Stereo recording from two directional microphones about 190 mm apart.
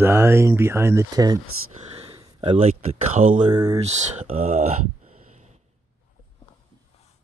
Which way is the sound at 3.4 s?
20° right (ahead or behind).